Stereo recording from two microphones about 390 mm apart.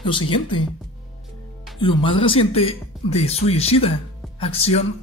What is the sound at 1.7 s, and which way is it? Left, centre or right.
Speech, centre.